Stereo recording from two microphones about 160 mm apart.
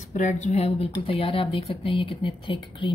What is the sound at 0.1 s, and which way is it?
Speech, 50° left (ahead or behind).